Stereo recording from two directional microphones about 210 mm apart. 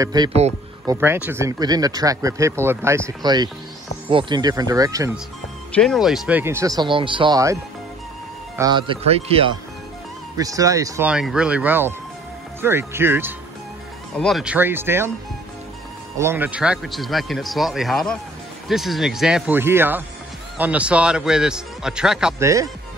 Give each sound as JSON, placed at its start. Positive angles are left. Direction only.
{"t": 0.0, "sound": "speech", "side_deg": -20}
{"t": 5.8, "sound": "speech", "side_deg": 0}
{"t": 8.5, "sound": "speech", "side_deg": -20}
{"t": 10.3, "sound": "speech", "side_deg": -15}
{"t": 14.1, "sound": "speech", "side_deg": 0}
{"t": 16.2, "sound": "speech", "side_deg": -10}
{"t": 22.4, "sound": "speech", "side_deg": -15}